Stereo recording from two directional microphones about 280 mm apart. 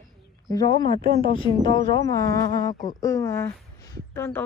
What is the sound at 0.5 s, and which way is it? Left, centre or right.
A woman's voice, centre.